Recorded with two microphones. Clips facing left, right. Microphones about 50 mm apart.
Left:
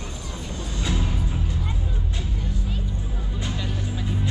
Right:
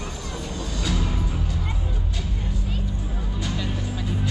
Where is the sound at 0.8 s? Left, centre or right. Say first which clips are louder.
Even; left.